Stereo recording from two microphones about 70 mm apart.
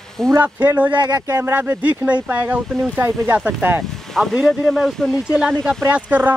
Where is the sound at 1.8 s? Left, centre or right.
Right.